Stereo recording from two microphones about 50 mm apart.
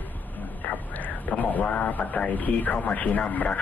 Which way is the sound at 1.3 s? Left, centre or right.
Left.